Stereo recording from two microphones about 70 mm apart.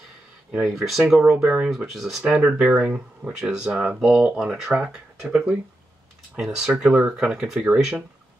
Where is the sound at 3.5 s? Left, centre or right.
Centre.